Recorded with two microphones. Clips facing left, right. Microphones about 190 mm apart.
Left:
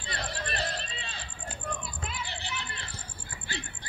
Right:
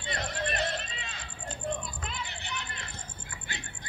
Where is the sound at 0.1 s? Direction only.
30° left (ahead or behind).